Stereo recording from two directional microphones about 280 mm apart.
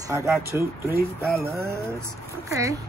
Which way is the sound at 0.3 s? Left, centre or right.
Centre.